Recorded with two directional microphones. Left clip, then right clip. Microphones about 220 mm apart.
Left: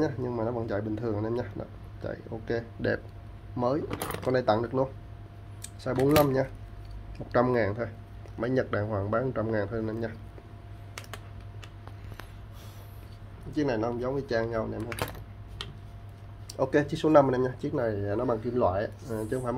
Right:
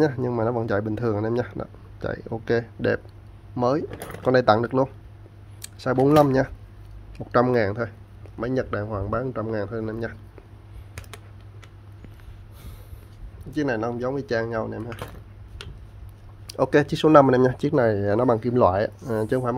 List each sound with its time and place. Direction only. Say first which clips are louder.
0.0 s a man's voice: right 7 dB; 30° right (ahead or behind)
13.5 s speech: right 3 dB; 35° right (ahead or behind)
16.4 s speech: right 6 dB; 35° right (ahead or behind)